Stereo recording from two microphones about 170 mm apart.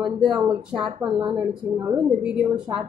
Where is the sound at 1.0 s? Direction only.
25° right (ahead or behind).